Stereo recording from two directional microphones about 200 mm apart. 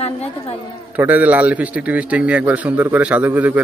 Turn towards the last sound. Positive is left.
turn(degrees=-5)  # may be behind; listen again after turning